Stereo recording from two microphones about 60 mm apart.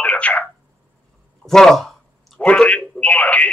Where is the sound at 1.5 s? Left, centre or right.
Centre.